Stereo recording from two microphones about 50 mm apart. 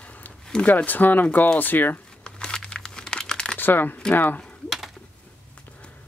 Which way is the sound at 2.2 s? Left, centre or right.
Centre.